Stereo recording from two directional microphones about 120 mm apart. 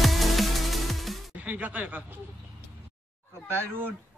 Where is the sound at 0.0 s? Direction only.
Centre (ahead or behind).